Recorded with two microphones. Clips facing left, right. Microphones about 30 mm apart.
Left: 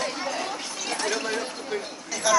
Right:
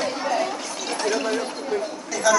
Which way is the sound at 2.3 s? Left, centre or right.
Centre.